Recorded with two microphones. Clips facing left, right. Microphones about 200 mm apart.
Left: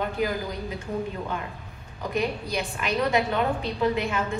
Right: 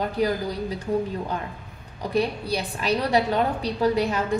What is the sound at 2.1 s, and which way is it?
A woman's voice, 35° right (ahead or behind).